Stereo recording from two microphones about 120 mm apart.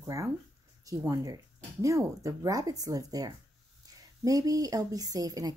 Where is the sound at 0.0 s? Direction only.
25° right (ahead or behind).